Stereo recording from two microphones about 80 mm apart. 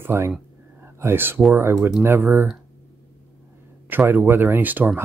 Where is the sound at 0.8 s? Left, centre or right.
Right.